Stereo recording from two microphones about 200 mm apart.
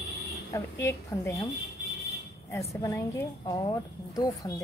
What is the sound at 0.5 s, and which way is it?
A woman's voice, 15° left (ahead or behind).